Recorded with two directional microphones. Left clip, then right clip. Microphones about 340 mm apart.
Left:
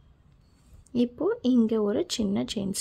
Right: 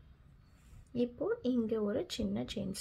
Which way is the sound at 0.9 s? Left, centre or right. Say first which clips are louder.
Left 8 dB; left.